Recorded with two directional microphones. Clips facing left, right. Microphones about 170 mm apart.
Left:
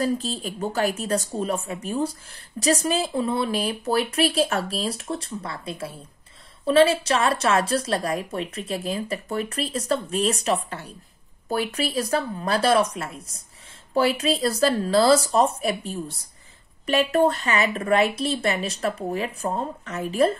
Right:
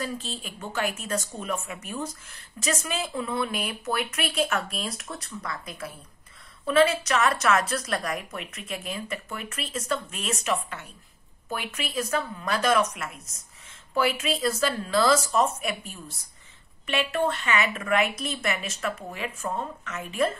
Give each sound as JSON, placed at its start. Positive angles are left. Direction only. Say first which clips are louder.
{"t": 0.0, "sound": "speech", "louder": "left 8 dB", "side_deg": 40}